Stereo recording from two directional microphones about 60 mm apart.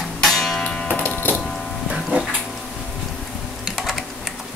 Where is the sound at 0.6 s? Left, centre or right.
Centre.